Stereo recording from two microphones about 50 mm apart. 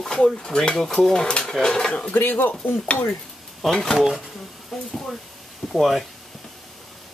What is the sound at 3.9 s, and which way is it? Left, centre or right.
Speech, centre.